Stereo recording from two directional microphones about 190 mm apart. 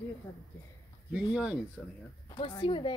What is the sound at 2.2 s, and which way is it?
Speech, 25° left (ahead or behind).